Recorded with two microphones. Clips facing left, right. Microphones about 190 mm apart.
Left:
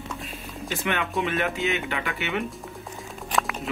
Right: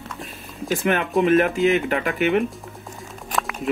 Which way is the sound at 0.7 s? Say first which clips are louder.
Right 7 dB; 45° right (ahead or behind).